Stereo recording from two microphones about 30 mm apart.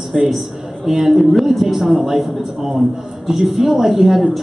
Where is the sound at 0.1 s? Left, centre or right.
Centre.